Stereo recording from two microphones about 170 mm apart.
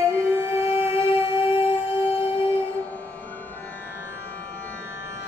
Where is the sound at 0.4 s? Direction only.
15° right (ahead or behind).